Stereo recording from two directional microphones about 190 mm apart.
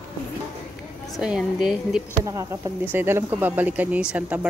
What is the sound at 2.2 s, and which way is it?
Speech, 20° right (ahead or behind).